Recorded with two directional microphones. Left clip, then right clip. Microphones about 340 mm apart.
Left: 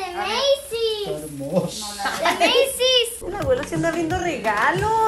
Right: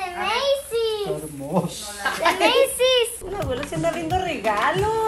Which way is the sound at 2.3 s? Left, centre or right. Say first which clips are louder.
Even; centre.